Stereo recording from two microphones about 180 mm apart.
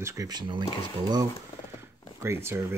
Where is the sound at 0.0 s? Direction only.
20° right (ahead or behind).